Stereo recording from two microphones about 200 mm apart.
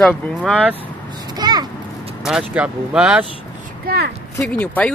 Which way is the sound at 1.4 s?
20° right (ahead or behind).